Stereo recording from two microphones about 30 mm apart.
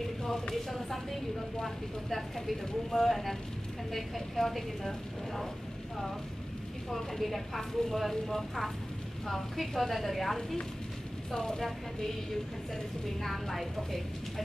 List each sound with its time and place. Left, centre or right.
0.2 s speech: centre
6.9 s speech: centre
11.3 s speech: left
13.2 s a woman's voice: centre